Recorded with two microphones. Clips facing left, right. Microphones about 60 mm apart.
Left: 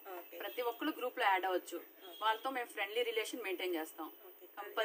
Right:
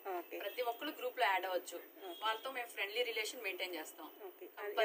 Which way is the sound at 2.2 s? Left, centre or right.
Left.